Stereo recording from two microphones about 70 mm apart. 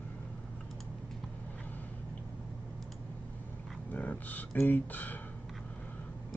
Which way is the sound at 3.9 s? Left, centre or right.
Left.